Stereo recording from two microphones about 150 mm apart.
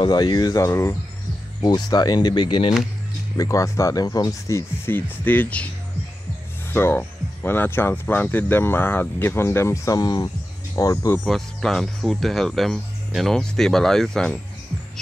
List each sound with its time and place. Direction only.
0.0 s speech: 30° left (ahead or behind)
3.3 s speech: 20° left (ahead or behind)
6.7 s speech: 15° left (ahead or behind)
11.2 s speech: centre (ahead or behind)